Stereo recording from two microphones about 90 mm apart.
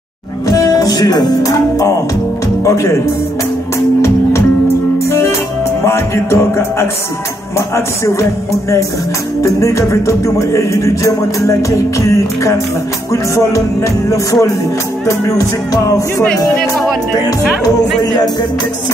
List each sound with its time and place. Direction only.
0.5 s music: 40° left (ahead or behind)
5.0 s music: 30° left (ahead or behind)